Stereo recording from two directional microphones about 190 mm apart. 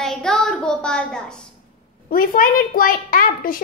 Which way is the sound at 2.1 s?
50° left (ahead or behind).